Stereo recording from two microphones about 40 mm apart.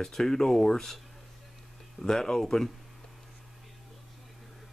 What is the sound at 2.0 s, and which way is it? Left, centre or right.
Speech, centre.